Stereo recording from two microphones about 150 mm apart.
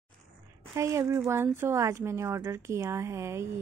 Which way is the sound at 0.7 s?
20° right (ahead or behind).